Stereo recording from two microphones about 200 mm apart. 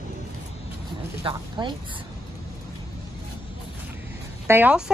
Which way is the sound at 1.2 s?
25° right (ahead or behind).